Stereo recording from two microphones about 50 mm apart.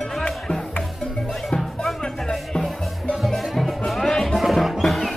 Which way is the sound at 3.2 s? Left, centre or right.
Centre.